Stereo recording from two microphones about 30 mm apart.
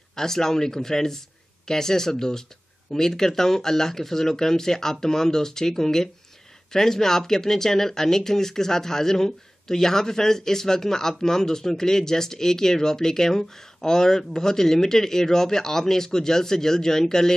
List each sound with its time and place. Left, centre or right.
0.1 s speech: centre